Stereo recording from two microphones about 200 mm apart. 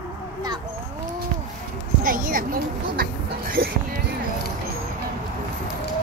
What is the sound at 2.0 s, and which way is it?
Speech, 45° right (ahead or behind).